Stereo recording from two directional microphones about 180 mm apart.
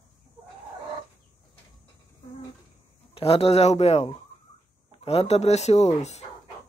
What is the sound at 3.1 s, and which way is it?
Speech, 35° left (ahead or behind).